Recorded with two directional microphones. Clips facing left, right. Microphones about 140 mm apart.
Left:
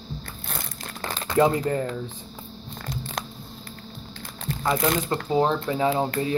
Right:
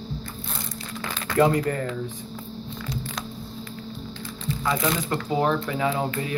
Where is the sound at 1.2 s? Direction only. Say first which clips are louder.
Even; 20° left (ahead or behind).